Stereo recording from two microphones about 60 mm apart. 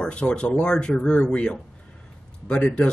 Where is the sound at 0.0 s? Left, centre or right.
Centre.